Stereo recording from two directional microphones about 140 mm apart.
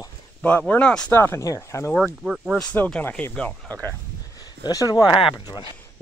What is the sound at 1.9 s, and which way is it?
Speech, centre (ahead or behind).